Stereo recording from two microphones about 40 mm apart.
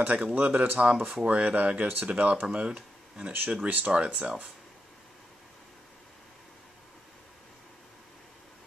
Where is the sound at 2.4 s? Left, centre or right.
Right.